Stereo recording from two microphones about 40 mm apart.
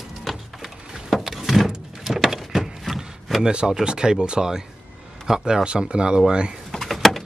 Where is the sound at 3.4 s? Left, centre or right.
Right.